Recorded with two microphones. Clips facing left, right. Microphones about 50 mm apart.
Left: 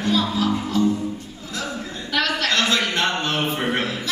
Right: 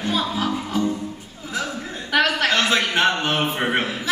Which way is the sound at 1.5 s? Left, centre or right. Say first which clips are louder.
Right 2 dB; centre.